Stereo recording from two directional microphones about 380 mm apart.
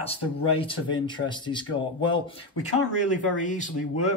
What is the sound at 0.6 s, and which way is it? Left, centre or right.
Speech, centre.